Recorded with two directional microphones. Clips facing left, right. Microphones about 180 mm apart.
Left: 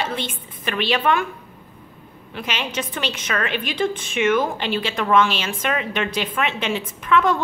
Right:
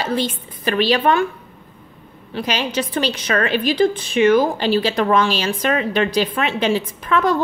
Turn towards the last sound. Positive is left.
turn(degrees=-40)  # may be behind; listen again after turning